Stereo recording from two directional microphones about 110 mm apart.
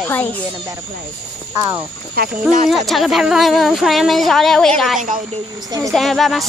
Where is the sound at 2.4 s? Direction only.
Centre (ahead or behind).